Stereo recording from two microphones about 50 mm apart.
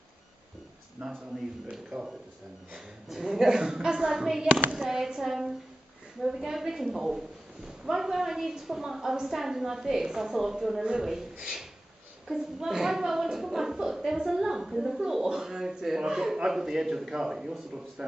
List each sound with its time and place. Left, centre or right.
1.0 s a man's voice: right
12.3 s a woman's voice: centre